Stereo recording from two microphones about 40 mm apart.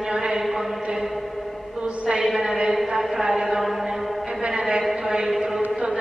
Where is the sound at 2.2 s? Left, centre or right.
Centre.